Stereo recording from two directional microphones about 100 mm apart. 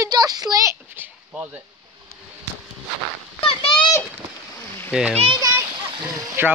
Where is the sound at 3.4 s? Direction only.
65° left (ahead or behind).